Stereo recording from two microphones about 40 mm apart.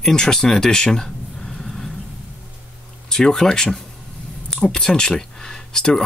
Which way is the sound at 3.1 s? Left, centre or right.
Centre.